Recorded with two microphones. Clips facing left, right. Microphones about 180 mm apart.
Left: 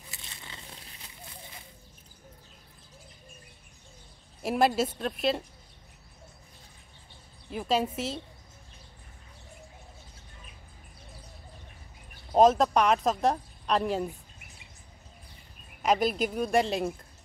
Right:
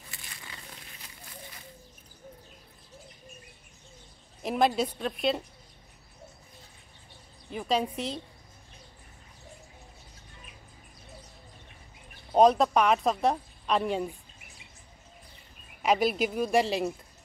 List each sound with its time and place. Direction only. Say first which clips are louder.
0.1 s a sound: even; 25° left (ahead or behind)
4.4 s a woman's voice: left 1 dB; 5° left (ahead or behind)
7.4 s a woman's voice: left 1 dB; centre (ahead or behind)
12.3 s a woman's voice: even; centre (ahead or behind)
15.8 s a woman's voice: even; centre (ahead or behind)